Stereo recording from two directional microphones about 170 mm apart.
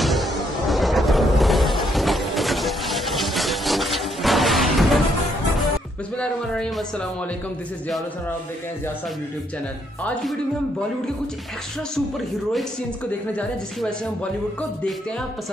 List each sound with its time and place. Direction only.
0.0 s music: centre (ahead or behind)
6.1 s a sound: 5° left (ahead or behind)
13.3 s speech: 5° left (ahead or behind)